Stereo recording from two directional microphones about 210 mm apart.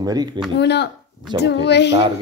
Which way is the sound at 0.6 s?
55° left (ahead or behind).